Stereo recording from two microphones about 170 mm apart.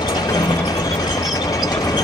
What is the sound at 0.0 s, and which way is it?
Ratchet, 25° left (ahead or behind).